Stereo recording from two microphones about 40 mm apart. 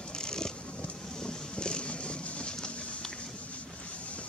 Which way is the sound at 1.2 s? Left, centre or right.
Left.